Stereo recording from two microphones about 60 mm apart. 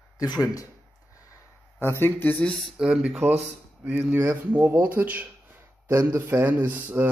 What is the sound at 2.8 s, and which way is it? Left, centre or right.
Speech, centre.